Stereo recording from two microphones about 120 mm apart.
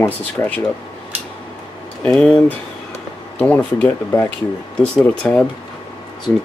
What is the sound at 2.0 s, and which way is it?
Speech, 10° left (ahead or behind).